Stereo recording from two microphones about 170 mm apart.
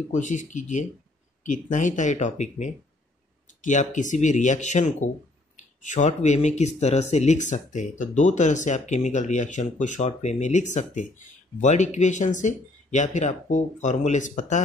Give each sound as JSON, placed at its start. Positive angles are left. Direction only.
{"t": 0.1, "sound": "speech", "side_deg": 45}